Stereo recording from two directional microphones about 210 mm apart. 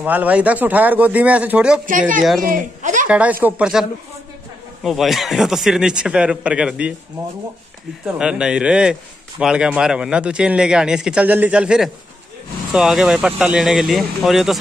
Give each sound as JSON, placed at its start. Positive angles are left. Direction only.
{"t": 0.0, "sound": "speech", "side_deg": -10}
{"t": 1.9, "sound": "speech", "side_deg": -40}
{"t": 3.1, "sound": "a man's voice", "side_deg": -5}
{"t": 4.8, "sound": "a man's voice", "side_deg": 0}
{"t": 8.0, "sound": "a man's voice", "side_deg": -5}